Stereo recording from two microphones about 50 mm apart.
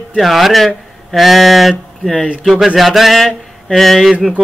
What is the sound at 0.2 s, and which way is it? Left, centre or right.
A man's voice, centre.